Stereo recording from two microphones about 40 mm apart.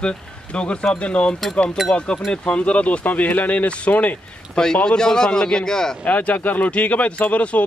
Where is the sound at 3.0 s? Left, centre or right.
Left.